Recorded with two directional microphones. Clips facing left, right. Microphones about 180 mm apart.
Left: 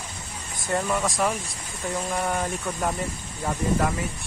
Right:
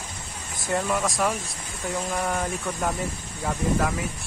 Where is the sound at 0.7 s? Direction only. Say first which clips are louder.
Even; centre (ahead or behind).